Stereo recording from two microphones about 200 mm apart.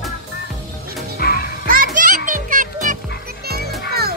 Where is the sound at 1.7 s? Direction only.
45° right (ahead or behind).